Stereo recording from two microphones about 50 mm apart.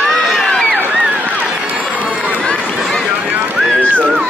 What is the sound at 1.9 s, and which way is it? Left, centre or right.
Run, right.